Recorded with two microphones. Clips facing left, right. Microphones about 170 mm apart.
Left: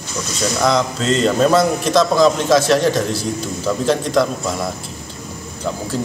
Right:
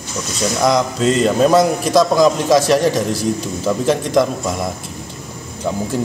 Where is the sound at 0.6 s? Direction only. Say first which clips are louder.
Right 3 dB; 10° right (ahead or behind).